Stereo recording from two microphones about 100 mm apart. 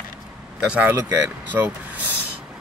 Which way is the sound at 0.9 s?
20° right (ahead or behind).